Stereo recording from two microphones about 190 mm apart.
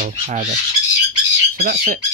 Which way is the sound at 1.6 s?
50° right (ahead or behind).